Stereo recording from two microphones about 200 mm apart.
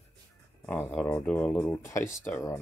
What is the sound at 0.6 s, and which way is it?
Speech, 10° left (ahead or behind).